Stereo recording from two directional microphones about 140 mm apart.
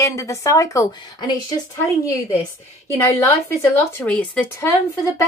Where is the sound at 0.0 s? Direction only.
20° left (ahead or behind).